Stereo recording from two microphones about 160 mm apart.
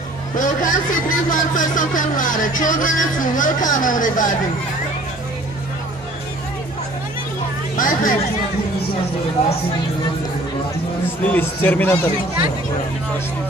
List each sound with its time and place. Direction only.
0.4 s speech: 55° left (ahead or behind)
7.7 s speech: 55° left (ahead or behind)
9.4 s speech: 40° left (ahead or behind)
11.1 s a man's voice: 10° left (ahead or behind)